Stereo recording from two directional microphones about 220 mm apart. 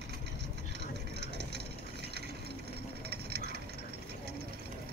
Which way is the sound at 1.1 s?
50° right (ahead or behind).